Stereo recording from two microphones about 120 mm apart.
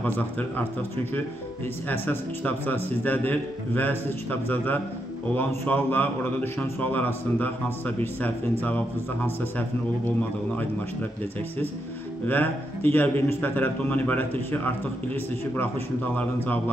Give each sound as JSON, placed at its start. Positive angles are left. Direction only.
{"t": 0.0, "sound": "a man's voice", "side_deg": 15}
{"t": 1.9, "sound": "a man's voice", "side_deg": 15}
{"t": 12.3, "sound": "a man's voice", "side_deg": 15}